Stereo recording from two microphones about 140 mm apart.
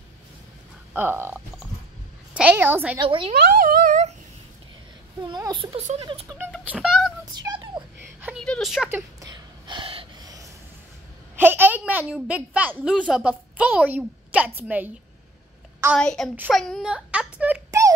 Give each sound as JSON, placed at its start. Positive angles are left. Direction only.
{"t": 0.9, "sound": "a woman's voice", "side_deg": -15}
{"t": 2.3, "sound": "a woman's voice", "side_deg": -10}
{"t": 3.0, "sound": "a child's voice", "side_deg": -40}
{"t": 3.5, "sound": "speech", "side_deg": -85}
{"t": 5.2, "sound": "a child's voice", "side_deg": -35}
{"t": 5.8, "sound": "speech", "side_deg": -50}
{"t": 6.6, "sound": "speech", "side_deg": -5}
{"t": 7.3, "sound": "a sound", "side_deg": -30}
{"t": 8.5, "sound": "speech", "side_deg": 0}
{"t": 9.2, "sound": "gasp", "side_deg": -30}
{"t": 11.3, "sound": "a woman's voice", "side_deg": -15}
{"t": 16.0, "sound": "a woman's voice", "side_deg": 5}
{"t": 17.6, "sound": "a sound", "side_deg": -20}